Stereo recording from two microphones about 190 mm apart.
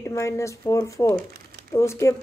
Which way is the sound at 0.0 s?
15° left (ahead or behind).